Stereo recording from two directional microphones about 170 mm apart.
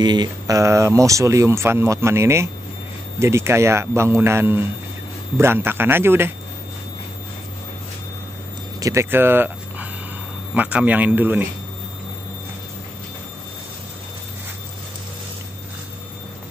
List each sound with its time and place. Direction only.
0.0 s speech: 25° right (ahead or behind)
8.7 s speech: 20° right (ahead or behind)